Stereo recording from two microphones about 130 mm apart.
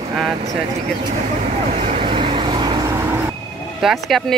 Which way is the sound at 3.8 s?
Centre (ahead or behind).